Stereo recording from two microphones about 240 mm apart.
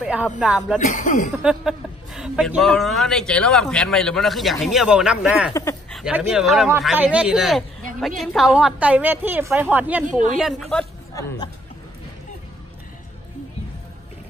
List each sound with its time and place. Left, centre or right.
0.0 s a man's voice: centre
0.7 s speech: left
1.4 s a man's voice: centre
5.5 s speech: centre
5.9 s a man's voice: centre
10.0 s a woman's voice: right
10.3 s a woman's voice: centre